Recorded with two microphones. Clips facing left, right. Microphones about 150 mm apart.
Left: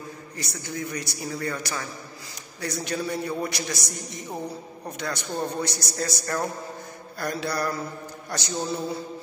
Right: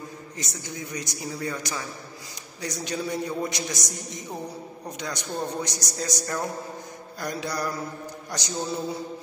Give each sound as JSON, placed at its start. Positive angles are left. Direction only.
{"t": 0.4, "sound": "a man's voice", "side_deg": -20}